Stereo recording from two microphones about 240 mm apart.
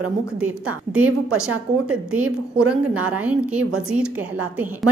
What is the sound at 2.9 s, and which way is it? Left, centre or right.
Speech, right.